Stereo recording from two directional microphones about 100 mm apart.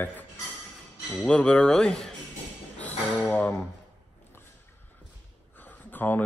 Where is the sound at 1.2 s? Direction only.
10° left (ahead or behind).